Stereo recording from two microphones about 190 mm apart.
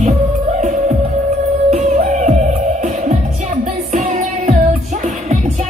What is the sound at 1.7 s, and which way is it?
Music, 40° right (ahead or behind).